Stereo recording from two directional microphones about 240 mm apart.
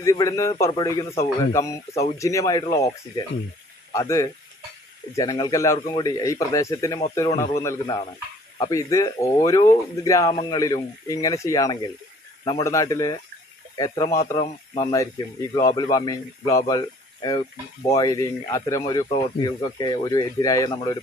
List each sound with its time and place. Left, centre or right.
0.0 s speech: centre